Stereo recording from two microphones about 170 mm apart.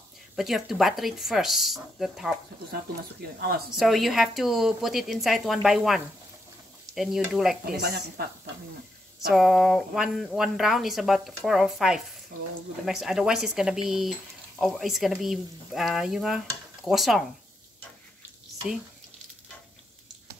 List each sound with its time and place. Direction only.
0.4 s speech: centre (ahead or behind)
2.7 s speech: 65° right (ahead or behind)
3.7 s speech: centre (ahead or behind)
7.8 s speech: 65° right (ahead or behind)
9.3 s speech: centre (ahead or behind)